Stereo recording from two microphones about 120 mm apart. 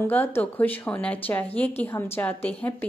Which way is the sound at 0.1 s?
15° left (ahead or behind).